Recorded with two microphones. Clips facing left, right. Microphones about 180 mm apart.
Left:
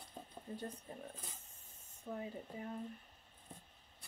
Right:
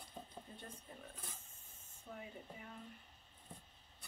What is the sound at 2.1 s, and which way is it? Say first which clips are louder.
Speech: left 7 dB; 35° left (ahead or behind).